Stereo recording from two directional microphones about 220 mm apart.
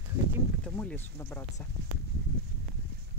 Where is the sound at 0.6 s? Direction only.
5° left (ahead or behind).